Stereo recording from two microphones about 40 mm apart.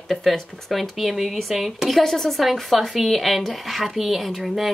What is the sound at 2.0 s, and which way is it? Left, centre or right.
Speech, centre.